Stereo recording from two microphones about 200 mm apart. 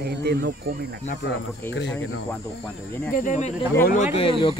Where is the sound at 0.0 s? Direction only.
55° right (ahead or behind).